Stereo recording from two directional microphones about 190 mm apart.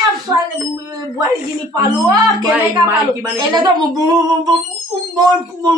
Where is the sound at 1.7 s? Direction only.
20° right (ahead or behind).